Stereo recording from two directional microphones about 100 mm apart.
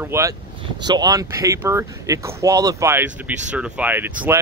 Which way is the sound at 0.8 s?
40° right (ahead or behind).